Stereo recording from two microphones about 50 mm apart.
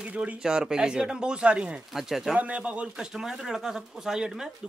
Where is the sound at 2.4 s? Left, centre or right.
Right.